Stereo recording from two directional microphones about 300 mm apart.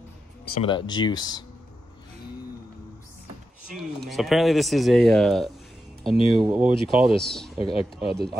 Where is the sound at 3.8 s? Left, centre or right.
Centre.